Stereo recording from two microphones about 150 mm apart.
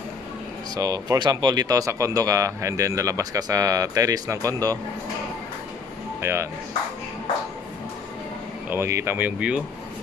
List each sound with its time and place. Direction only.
0.7 s speech: 25° right (ahead or behind)
8.7 s speech: 15° right (ahead or behind)